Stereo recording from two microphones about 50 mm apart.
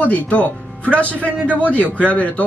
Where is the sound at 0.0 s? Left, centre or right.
Left.